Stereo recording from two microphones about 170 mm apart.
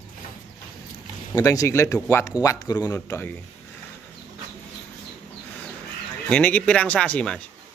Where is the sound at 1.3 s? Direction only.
20° left (ahead or behind).